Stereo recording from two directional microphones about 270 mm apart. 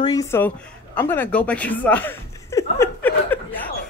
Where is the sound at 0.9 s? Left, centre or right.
Centre.